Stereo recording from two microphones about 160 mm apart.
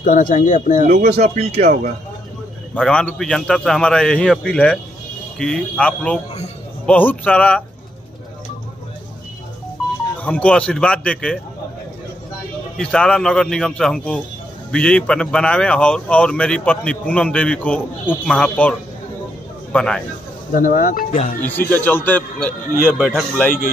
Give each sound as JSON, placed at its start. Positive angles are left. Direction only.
{"t": 0.0, "sound": "speech", "side_deg": 55}
{"t": 0.9, "sound": "speech", "side_deg": -85}
{"t": 2.7, "sound": "a man's voice", "side_deg": 5}
{"t": 10.2, "sound": "a man's voice", "side_deg": 10}
{"t": 12.7, "sound": "a man's voice", "side_deg": 5}
{"t": 20.5, "sound": "speech", "side_deg": 60}
{"t": 21.4, "sound": "a man's voice", "side_deg": 10}